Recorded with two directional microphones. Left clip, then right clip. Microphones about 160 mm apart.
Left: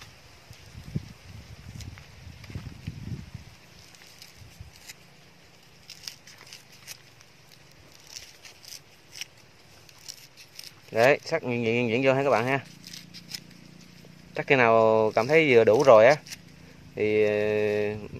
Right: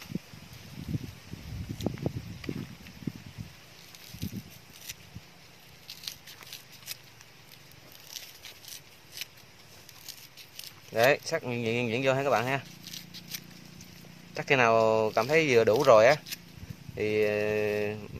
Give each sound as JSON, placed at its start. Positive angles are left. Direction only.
{"t": 6.9, "sound": "a sound", "side_deg": 5}
{"t": 10.9, "sound": "speech", "side_deg": 40}
{"t": 12.8, "sound": "scissors", "side_deg": 15}
{"t": 14.3, "sound": "speech", "side_deg": 40}